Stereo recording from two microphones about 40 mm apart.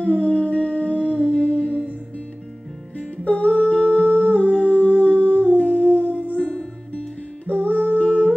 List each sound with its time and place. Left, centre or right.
0.0 s humming: left
1.3 s music: left
3.3 s humming: left
5.0 s music: left